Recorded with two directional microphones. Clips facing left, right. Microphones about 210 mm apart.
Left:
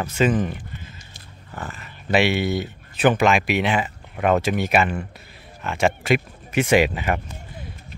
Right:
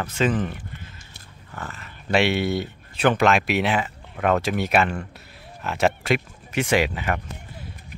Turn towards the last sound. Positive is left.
turn(degrees=15)  # may be behind; listen again after turning